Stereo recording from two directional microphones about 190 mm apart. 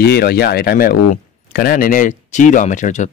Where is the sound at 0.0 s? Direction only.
55° left (ahead or behind).